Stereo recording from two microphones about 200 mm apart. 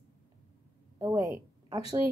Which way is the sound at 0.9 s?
15° right (ahead or behind).